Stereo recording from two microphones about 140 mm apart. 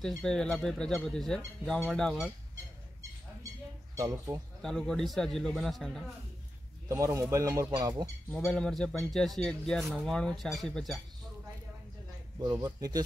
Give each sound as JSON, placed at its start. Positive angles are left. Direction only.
{"t": 0.2, "sound": "speech", "side_deg": 5}
{"t": 3.9, "sound": "speech", "side_deg": -25}
{"t": 4.6, "sound": "speech", "side_deg": 5}
{"t": 6.9, "sound": "speech", "side_deg": -20}
{"t": 8.5, "sound": "speech", "side_deg": 5}
{"t": 12.4, "sound": "speech", "side_deg": -30}